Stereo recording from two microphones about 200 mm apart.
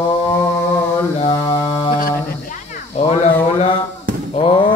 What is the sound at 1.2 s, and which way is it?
Mantra, 15° left (ahead or behind).